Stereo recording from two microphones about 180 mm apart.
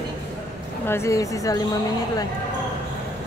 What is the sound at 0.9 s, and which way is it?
A woman's voice, 15° left (ahead or behind).